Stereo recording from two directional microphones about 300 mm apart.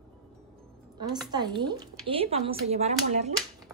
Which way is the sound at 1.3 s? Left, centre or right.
Centre.